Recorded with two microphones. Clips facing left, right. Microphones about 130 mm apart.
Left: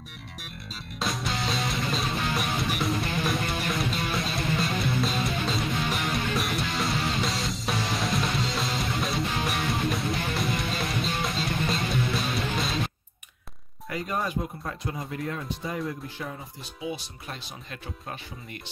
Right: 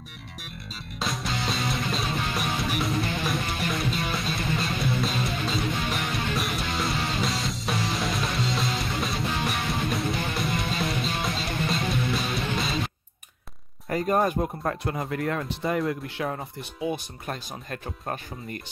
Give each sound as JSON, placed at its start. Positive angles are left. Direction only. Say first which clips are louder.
{"t": 0.9, "sound": "music", "louder": "even", "side_deg": 0}
{"t": 13.8, "sound": "speech", "louder": "right 7 dB", "side_deg": -45}
{"t": 16.8, "sound": "speech", "louder": "right 5 dB", "side_deg": -50}